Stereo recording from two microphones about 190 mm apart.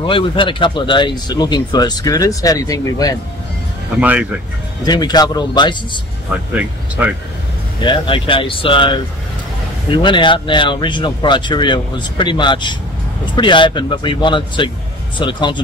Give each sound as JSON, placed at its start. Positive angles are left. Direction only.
{"t": 0.0, "sound": "speech", "side_deg": 25}
{"t": 4.0, "sound": "speech", "side_deg": -10}
{"t": 4.8, "sound": "speech", "side_deg": 20}
{"t": 6.5, "sound": "speech", "side_deg": -5}
{"t": 7.8, "sound": "speech", "side_deg": 25}